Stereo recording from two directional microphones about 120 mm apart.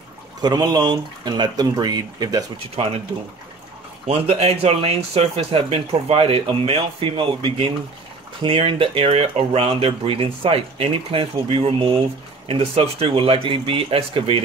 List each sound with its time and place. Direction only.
0.4 s speech: 35° right (ahead or behind)
4.3 s speech: 60° right (ahead or behind)